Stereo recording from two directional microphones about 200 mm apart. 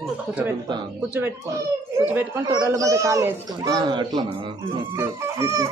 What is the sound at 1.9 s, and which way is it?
Speech, 10° right (ahead or behind).